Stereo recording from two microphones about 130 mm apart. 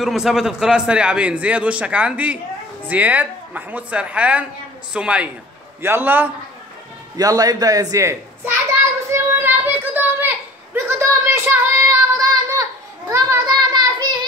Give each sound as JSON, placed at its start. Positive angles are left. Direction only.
{"t": 0.0, "sound": "a man's voice", "side_deg": 0}
{"t": 7.2, "sound": "a child's voice", "side_deg": -30}
{"t": 9.1, "sound": "a sound", "side_deg": -15}
{"t": 13.5, "sound": "child singing", "side_deg": -30}